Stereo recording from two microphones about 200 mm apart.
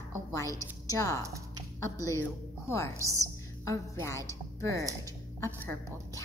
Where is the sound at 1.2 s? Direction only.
15° right (ahead or behind).